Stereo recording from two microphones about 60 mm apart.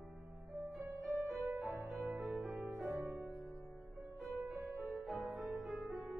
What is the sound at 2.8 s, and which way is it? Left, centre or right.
Music, right.